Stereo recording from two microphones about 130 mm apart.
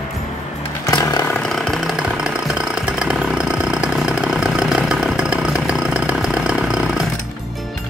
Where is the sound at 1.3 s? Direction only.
5° left (ahead or behind).